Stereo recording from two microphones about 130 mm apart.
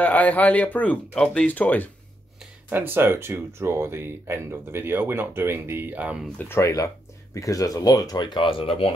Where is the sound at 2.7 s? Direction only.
15° right (ahead or behind).